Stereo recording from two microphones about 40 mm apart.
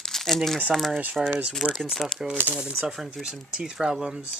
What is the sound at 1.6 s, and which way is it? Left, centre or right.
Speech, right.